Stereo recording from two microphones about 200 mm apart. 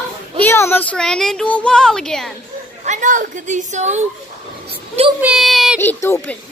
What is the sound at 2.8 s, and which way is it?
A woman's voice, 40° right (ahead or behind).